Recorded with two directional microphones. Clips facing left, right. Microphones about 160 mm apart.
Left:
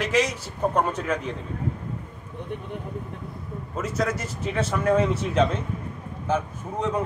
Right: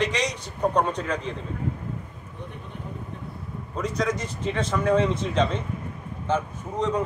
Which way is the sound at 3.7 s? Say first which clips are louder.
Even; 5° left (ahead or behind).